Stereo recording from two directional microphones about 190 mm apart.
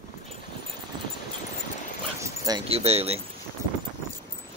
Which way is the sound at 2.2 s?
20° right (ahead or behind).